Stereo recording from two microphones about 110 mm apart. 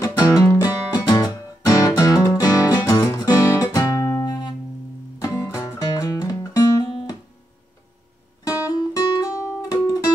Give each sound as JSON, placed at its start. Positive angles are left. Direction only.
{"t": 0.0, "sound": "music", "side_deg": 35}
{"t": 8.5, "sound": "music", "side_deg": 35}